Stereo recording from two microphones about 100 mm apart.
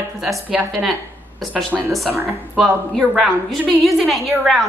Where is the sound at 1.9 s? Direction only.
Centre (ahead or behind).